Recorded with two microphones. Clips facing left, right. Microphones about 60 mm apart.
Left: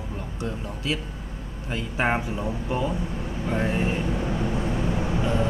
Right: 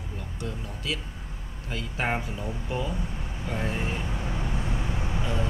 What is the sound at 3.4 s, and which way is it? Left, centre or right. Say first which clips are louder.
Vehicle: left 6 dB; left.